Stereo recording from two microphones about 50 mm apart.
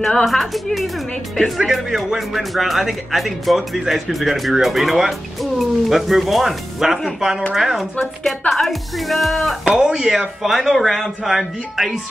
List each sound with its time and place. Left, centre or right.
0.0 s speech: centre
9.7 s speech: centre